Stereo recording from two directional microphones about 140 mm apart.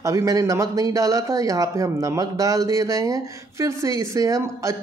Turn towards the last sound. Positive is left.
turn(degrees=-20)  # may be behind; listen again after turning